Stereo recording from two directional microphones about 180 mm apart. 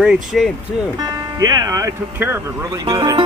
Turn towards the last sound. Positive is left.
turn(degrees=-20)  # may be behind; listen again after turning